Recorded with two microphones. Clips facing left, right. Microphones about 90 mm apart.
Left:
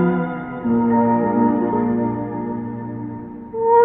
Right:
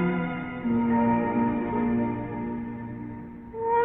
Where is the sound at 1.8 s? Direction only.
35° left (ahead or behind).